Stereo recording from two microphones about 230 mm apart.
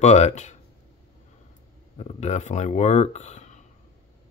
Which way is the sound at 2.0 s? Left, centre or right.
Left.